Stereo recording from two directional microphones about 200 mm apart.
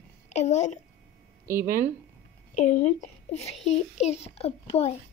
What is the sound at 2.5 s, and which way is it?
A child's voice, 35° left (ahead or behind).